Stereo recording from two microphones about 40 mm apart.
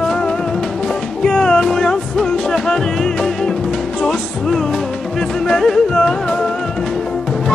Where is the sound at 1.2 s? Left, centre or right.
Centre.